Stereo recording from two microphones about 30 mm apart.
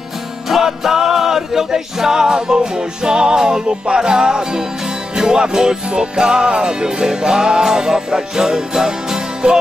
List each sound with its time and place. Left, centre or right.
0.5 s music: centre